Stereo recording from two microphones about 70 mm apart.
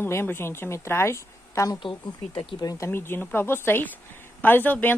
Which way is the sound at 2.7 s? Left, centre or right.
Left.